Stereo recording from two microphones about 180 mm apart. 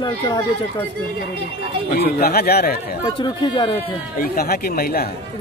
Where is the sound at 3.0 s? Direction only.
25° left (ahead or behind).